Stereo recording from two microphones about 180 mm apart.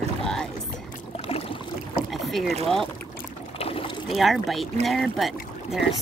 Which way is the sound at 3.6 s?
30° left (ahead or behind).